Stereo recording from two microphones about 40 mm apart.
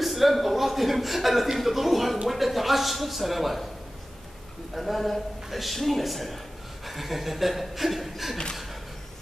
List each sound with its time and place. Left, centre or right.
0.0 s a man's voice: centre
4.7 s a man's voice: centre